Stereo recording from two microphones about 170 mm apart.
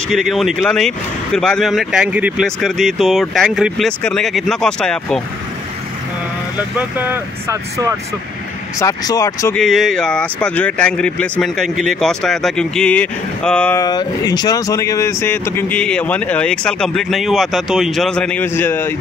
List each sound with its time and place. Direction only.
0.1 s speech: centre (ahead or behind)
7.1 s speech: 15° right (ahead or behind)
8.7 s speech: 20° left (ahead or behind)
9.6 s speech: centre (ahead or behind)
13.7 s speech: 25° left (ahead or behind)